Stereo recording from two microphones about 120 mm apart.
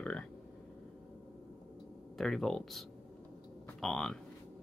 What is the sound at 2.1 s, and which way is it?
Speech, 5° left (ahead or behind).